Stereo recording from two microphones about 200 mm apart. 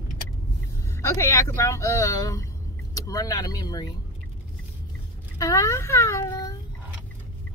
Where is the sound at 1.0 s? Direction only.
15° left (ahead or behind).